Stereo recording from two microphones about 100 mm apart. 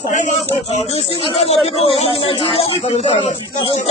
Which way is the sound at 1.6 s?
90° left.